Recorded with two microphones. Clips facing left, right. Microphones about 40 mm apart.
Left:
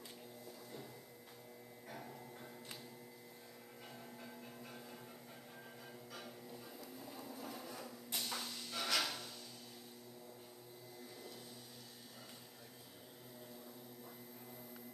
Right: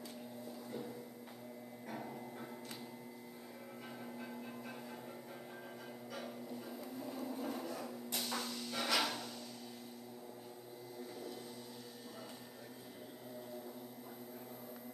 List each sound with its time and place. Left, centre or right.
1.9 s music: centre
4.2 s music: centre
7.2 s train: right
7.6 s a sound: centre